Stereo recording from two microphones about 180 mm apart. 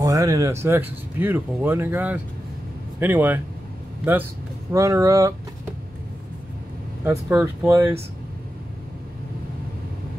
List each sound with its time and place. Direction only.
0.0 s speech: 20° right (ahead or behind)
4.7 s speech: 15° right (ahead or behind)
7.1 s speech: 10° right (ahead or behind)